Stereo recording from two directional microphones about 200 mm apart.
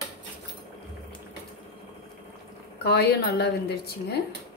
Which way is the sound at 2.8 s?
55° left (ahead or behind).